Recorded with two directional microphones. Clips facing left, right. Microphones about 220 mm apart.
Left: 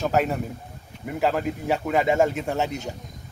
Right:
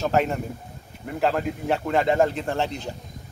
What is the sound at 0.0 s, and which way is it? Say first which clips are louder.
A man's voice: even; 5° left (ahead or behind).